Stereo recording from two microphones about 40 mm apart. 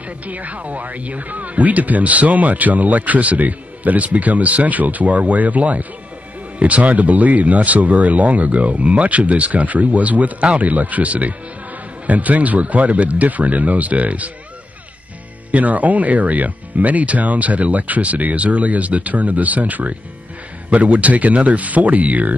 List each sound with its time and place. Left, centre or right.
0.2 s speech: right
15.5 s speech: right